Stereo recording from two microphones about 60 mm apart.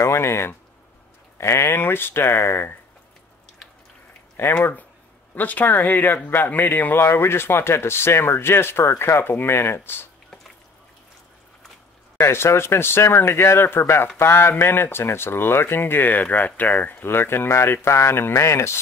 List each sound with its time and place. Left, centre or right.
0.0 s speech: left
4.6 s speech: left
12.2 s speech: left